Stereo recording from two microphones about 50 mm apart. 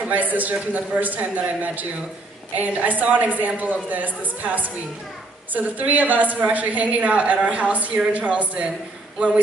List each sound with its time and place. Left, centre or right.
0.1 s a woman's voice: right